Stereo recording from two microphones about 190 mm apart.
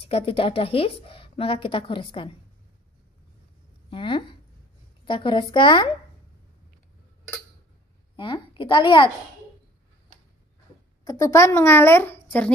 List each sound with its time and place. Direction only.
0.0 s a woman's voice: 30° left (ahead or behind)
3.9 s a woman's voice: 25° left (ahead or behind)
8.2 s a woman's voice: 25° left (ahead or behind)
11.1 s a woman's voice: 20° left (ahead or behind)